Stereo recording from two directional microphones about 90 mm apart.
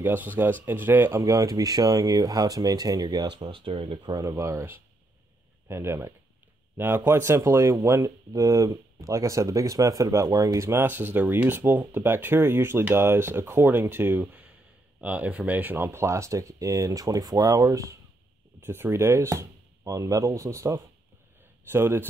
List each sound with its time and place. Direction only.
0.0 s speech: 20° right (ahead or behind)
1.2 s speech: 40° right (ahead or behind)
3.4 s speech: 70° right (ahead or behind)
4.2 s a man's voice: 35° right (ahead or behind)
15.0 s speech: 15° right (ahead or behind); by 17.9 s 40° right (ahead or behind)
18.6 s speech: 25° right (ahead or behind)